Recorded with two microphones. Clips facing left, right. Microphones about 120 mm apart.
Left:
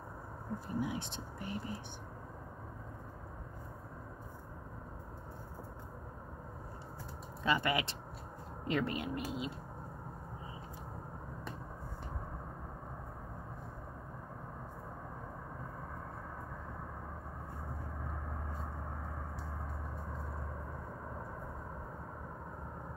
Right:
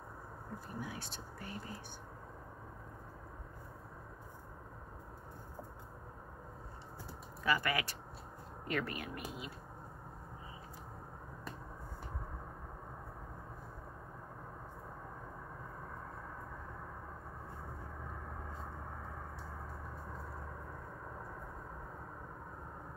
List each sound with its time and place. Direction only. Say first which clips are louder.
0.7 s speech: left 8 dB; 20° left (ahead or behind)
7.4 s speech: left 2 dB; 20° left (ahead or behind)